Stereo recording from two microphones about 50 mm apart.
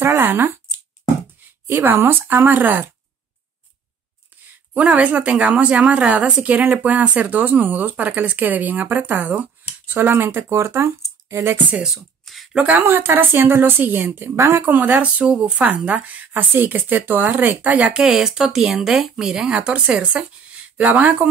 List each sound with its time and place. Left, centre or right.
0.0 s speech: right
1.7 s a woman's voice: right
4.7 s speech: right
9.8 s a woman's voice: right
10.7 s speech: right
11.8 s speech: centre
12.8 s a woman's voice: right
15.3 s speech: centre
17.9 s a woman's voice: centre; by 21.3 s right